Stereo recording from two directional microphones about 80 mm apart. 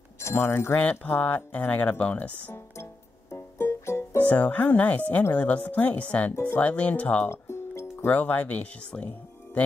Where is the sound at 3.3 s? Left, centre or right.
Left.